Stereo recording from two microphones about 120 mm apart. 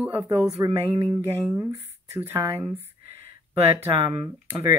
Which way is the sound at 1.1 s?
20° right (ahead or behind).